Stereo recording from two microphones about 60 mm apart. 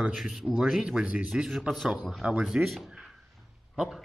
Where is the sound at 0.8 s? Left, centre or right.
Centre.